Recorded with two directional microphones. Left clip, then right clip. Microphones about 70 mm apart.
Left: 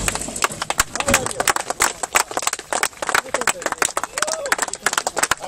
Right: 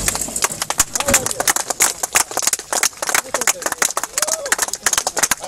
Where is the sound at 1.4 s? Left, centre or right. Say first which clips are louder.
Left 1 dB; left.